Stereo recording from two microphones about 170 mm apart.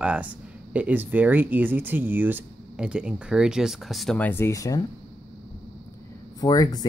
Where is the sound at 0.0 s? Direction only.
5° right (ahead or behind); by 4.8 s 20° left (ahead or behind).